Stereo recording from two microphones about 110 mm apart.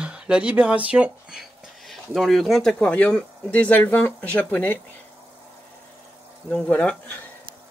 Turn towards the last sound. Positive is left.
turn(degrees=15)  # may be behind; listen again after turning